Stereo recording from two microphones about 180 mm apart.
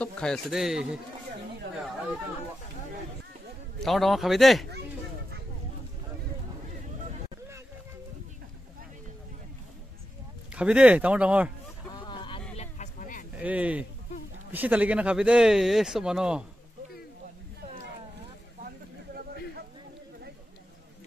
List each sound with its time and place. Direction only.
0.0 s a man's voice: 5° left (ahead or behind)
3.8 s speech: centre (ahead or behind)
10.5 s speech: 5° right (ahead or behind)
11.9 s vehicle: 25° left (ahead or behind)
12.5 s vehicle: 40° left (ahead or behind)
13.4 s speech: 10° right (ahead or behind)